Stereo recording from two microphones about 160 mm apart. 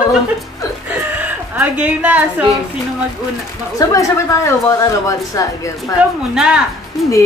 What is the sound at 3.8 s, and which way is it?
Speech, 20° left (ahead or behind).